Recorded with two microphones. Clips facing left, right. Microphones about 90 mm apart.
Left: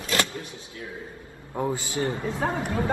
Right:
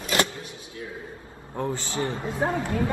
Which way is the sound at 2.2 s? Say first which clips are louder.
Right 1 dB; 20° right (ahead or behind).